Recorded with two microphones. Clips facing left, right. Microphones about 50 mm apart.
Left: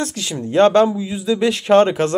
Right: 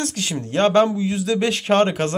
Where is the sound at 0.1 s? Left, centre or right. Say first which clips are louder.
Left 4 dB; right.